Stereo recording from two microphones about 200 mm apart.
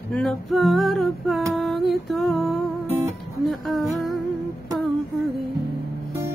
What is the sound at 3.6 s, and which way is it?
Music, centre (ahead or behind).